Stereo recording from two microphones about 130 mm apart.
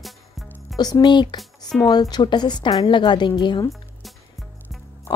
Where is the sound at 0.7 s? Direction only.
30° left (ahead or behind).